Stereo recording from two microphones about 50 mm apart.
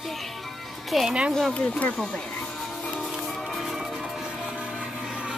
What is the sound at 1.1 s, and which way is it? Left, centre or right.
Speech, centre.